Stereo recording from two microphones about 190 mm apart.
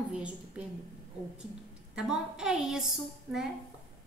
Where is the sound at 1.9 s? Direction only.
5° right (ahead or behind).